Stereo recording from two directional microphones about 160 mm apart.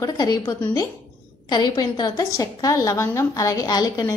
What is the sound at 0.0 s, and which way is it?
A woman's voice, 20° left (ahead or behind).